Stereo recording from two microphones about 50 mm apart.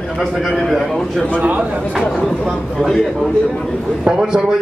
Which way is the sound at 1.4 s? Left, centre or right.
Right.